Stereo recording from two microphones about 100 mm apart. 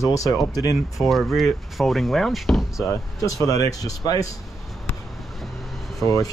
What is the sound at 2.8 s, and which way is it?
Speech, 35° left (ahead or behind).